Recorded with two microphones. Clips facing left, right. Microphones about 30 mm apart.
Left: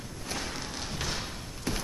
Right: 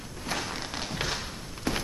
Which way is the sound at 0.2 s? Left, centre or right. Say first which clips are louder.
Right 3 dB; right.